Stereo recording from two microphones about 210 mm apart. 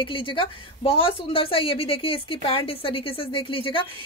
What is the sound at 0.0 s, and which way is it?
A woman's voice, 25° left (ahead or behind).